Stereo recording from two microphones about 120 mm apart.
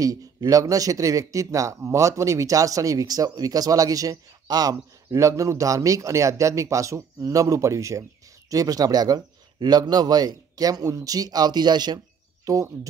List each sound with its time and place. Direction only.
0.0 s a man's voice: 30° right (ahead or behind)